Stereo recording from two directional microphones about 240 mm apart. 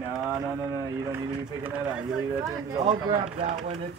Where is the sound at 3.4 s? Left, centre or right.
Right.